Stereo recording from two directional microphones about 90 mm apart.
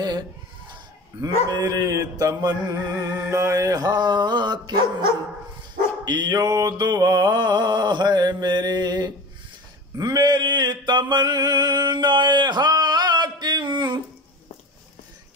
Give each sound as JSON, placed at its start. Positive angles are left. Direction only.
{"t": 1.2, "sound": "mantra", "side_deg": -40}
{"t": 6.0, "sound": "mantra", "side_deg": -55}
{"t": 9.9, "sound": "a sound", "side_deg": -45}